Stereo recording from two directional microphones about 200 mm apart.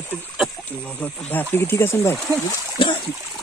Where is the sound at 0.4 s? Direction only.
5° left (ahead or behind).